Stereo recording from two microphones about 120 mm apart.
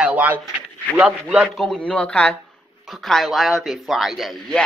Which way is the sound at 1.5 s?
5° left (ahead or behind).